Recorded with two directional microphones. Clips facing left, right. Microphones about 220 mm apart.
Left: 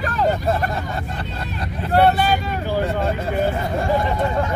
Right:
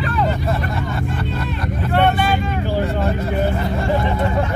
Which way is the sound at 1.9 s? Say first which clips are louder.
Left 1 dB; 40° left (ahead or behind).